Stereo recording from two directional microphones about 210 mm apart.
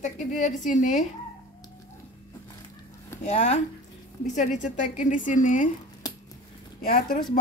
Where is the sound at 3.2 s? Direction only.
35° left (ahead or behind).